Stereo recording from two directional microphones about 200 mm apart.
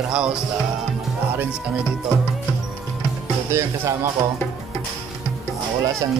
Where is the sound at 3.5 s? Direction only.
15° right (ahead or behind).